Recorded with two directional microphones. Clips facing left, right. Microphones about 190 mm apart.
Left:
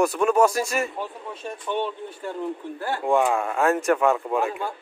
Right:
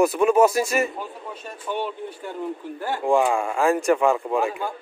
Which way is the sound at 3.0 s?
Centre (ahead or behind).